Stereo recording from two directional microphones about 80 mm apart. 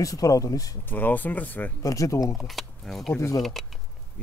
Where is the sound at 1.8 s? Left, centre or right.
Left.